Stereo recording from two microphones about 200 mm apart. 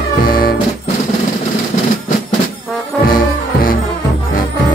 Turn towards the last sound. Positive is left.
turn(degrees=45)  # may be behind; listen again after turning